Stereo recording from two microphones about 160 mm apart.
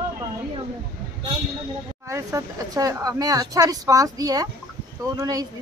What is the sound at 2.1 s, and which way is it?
Speech, 20° right (ahead or behind).